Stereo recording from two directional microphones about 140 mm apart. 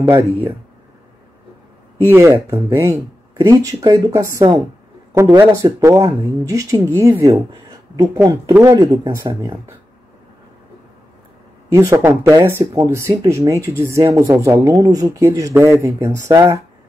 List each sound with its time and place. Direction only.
2.0 s speech: 15° right (ahead or behind)
11.7 s speech: 20° right (ahead or behind)